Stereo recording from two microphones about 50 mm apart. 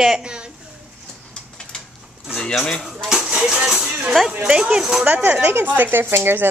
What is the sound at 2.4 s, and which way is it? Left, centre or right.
Speech, centre.